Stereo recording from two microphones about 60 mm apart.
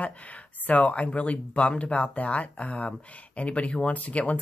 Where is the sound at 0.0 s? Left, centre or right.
Left.